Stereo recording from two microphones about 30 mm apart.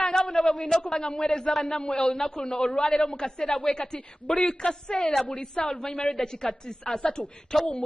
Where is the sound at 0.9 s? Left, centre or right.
Left.